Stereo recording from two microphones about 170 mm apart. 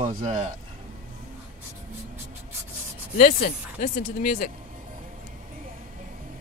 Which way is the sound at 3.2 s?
50° left (ahead or behind).